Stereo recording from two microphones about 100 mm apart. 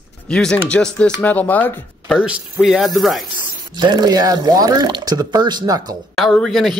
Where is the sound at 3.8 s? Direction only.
45° right (ahead or behind).